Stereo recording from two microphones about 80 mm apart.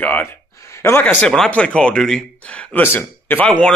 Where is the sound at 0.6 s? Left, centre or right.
Left.